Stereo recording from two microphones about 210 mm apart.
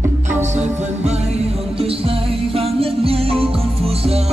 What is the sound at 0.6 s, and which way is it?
Music, 30° right (ahead or behind).